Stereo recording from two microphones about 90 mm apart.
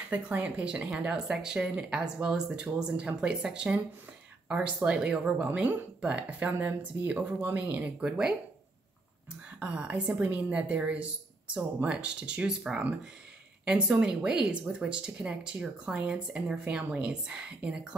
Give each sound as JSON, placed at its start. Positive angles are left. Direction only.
{"t": 0.1, "sound": "speech", "side_deg": -15}
{"t": 8.0, "sound": "speech", "side_deg": -10}
{"t": 9.6, "sound": "speech", "side_deg": -15}